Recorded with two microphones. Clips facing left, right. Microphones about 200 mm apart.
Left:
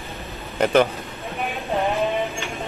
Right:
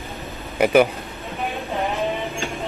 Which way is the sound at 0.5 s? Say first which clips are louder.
Right 2 dB; 10° right (ahead or behind).